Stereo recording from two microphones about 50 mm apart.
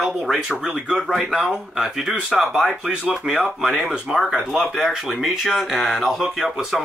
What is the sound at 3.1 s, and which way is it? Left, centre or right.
Speech, right.